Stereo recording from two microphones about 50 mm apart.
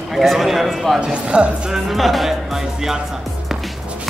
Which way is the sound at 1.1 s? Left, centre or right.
Right.